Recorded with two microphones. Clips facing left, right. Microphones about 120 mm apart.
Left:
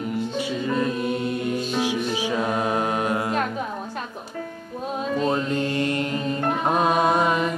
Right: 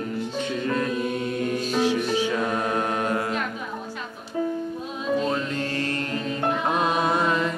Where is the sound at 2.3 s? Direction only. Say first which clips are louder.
Left 1 dB; 15° left (ahead or behind).